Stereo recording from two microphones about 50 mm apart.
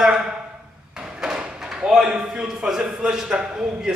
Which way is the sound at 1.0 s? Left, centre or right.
Centre.